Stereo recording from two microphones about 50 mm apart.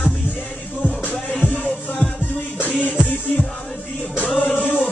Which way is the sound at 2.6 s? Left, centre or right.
Left.